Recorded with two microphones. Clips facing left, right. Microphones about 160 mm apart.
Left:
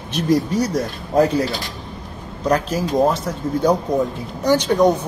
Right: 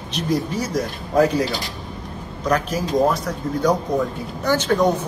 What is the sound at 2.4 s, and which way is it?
A man's voice, 30° left (ahead or behind).